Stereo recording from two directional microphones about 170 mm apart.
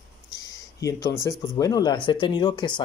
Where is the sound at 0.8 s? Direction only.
20° left (ahead or behind).